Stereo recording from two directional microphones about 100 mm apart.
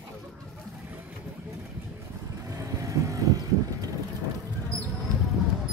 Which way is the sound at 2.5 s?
35° right (ahead or behind).